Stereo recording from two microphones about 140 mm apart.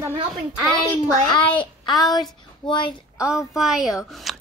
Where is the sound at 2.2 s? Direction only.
35° left (ahead or behind).